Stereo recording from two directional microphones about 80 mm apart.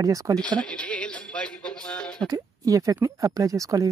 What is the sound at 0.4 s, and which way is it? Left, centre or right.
Speech, centre.